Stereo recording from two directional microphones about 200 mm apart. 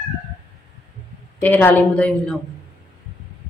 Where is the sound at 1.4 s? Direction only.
10° left (ahead or behind).